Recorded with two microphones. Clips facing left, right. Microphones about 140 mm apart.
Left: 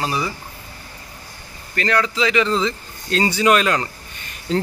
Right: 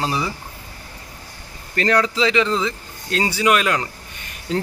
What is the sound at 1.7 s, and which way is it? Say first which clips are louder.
Speech: right 2 dB; 35° right (ahead or behind).